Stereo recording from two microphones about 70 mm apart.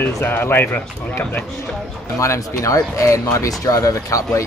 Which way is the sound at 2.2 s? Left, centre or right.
Left.